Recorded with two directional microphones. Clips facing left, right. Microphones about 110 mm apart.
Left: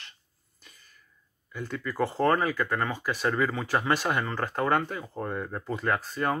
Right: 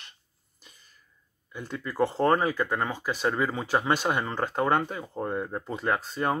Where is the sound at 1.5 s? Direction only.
20° right (ahead or behind).